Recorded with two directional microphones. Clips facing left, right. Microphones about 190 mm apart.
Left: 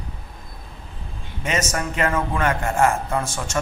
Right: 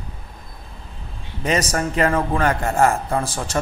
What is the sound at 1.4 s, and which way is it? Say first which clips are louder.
A man's voice: right 4 dB; 35° right (ahead or behind).